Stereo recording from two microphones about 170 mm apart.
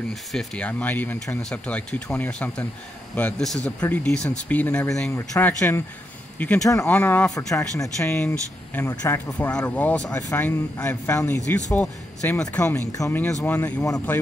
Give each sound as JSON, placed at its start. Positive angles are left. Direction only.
{"t": 0.1, "sound": "speech", "side_deg": 0}
{"t": 9.5, "sound": "speech", "side_deg": 5}